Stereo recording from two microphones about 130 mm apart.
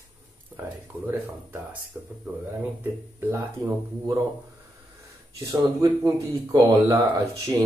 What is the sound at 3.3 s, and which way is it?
Speech, 25° right (ahead or behind).